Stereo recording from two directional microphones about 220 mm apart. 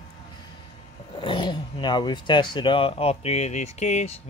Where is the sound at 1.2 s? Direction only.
20° left (ahead or behind).